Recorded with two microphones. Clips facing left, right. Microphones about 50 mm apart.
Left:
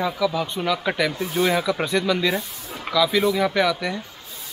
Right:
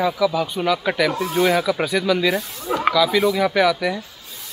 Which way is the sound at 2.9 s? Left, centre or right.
Centre.